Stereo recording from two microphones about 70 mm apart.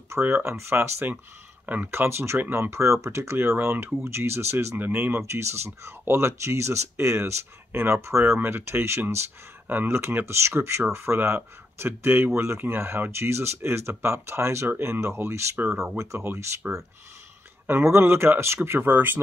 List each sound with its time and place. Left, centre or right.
0.1 s speech: right
4.7 s speech: right
15.7 s speech: centre
16.0 s speech: right
16.6 s speech: right
17.6 s speech: right